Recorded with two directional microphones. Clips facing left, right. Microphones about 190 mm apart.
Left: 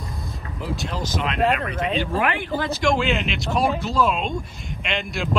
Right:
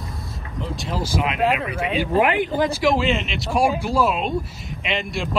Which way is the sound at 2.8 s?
Centre (ahead or behind).